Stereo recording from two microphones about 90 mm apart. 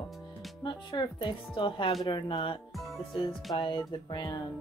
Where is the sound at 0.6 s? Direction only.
60° left (ahead or behind).